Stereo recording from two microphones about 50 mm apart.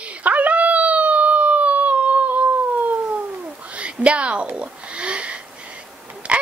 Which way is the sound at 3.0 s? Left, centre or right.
Right.